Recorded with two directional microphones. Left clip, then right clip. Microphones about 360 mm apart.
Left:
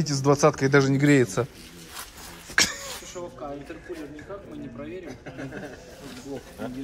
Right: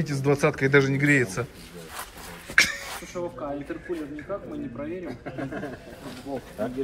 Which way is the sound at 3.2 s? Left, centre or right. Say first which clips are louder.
Right 6 dB; right.